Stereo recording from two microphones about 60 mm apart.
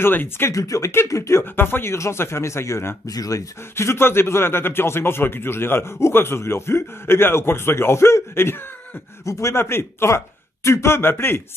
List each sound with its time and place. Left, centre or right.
0.0 s speech: left
0.5 s speech: left
1.4 s speech: left
3.1 s speech: left
3.7 s speech: left
9.2 s speech: left